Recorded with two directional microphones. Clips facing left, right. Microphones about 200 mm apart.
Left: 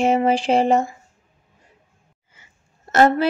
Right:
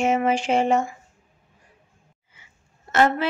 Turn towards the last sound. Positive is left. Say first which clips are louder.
# left 4 dB
turn(degrees=40)  # may be behind; listen again after turning